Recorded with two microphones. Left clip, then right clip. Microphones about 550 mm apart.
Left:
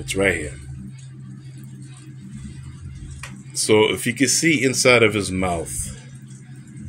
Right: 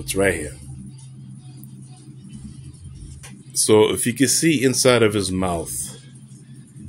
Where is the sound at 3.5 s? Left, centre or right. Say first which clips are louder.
Right 1 dB; right.